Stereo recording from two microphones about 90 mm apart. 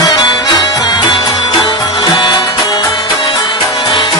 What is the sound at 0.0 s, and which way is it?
Music, 50° left (ahead or behind).